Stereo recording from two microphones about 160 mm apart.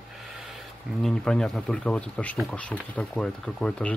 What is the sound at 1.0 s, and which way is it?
Speech, 5° left (ahead or behind).